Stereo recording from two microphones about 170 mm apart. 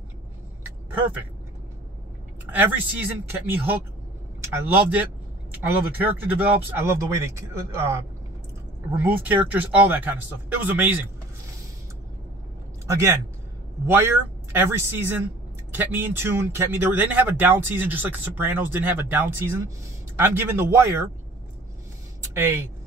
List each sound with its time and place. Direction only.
2.5 s speech: 10° right (ahead or behind)
8.9 s speech: 10° right (ahead or behind)
13.8 s speech: 10° right (ahead or behind)
22.3 s speech: 15° right (ahead or behind)